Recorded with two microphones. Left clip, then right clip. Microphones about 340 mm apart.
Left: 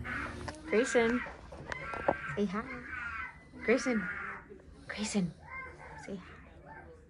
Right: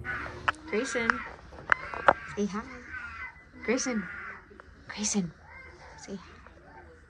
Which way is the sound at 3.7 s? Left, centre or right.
Centre.